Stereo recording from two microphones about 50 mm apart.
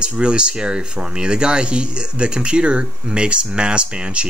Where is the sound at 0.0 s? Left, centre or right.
Centre.